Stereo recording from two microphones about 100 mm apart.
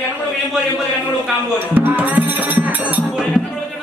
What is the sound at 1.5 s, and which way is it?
Music, 20° right (ahead or behind).